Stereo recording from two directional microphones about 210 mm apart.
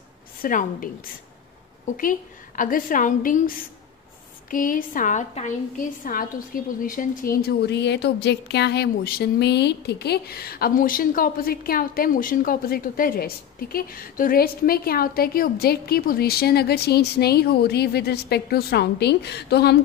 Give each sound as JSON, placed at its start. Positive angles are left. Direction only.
{"t": 0.4, "sound": "a woman's voice", "side_deg": 40}
{"t": 1.9, "sound": "a woman's voice", "side_deg": 40}